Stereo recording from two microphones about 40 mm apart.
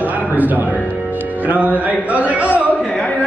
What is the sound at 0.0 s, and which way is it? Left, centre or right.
Music, right.